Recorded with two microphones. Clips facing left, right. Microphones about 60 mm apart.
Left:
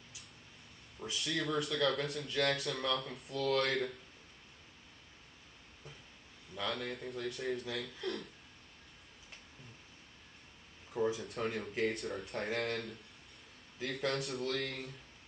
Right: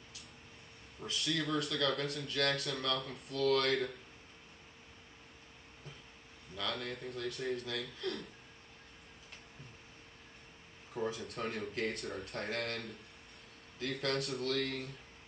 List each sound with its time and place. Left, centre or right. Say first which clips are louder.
1.2 s speech: even; centre
6.7 s speech: even; centre
10.9 s speech: left 3 dB; centre